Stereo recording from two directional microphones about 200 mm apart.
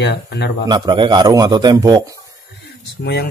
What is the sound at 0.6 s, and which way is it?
A man's voice, 20° right (ahead or behind).